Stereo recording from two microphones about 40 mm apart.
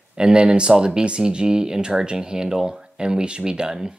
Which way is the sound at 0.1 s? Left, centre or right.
Right.